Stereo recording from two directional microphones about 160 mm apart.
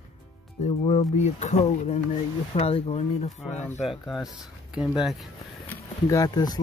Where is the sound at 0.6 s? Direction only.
40° left (ahead or behind).